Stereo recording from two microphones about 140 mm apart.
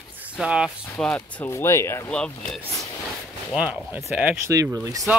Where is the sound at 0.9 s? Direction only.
10° left (ahead or behind).